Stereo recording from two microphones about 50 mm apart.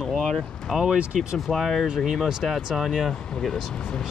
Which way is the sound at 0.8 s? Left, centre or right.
Centre.